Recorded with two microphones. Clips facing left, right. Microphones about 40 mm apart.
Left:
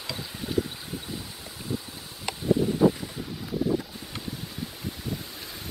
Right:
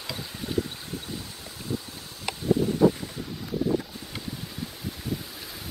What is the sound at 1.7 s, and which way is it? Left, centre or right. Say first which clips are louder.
Boat: right 1 dB; centre.